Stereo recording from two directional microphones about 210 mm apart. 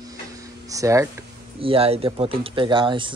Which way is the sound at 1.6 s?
25° right (ahead or behind).